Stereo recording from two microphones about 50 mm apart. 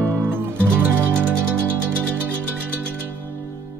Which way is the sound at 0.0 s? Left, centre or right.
Right.